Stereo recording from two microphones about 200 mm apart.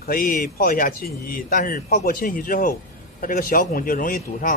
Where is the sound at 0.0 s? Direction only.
45° left (ahead or behind).